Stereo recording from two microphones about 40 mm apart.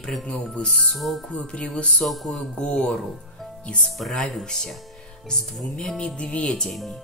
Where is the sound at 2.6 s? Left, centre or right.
Centre.